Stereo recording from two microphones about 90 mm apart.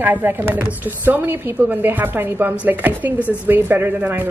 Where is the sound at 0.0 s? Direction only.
20° right (ahead or behind).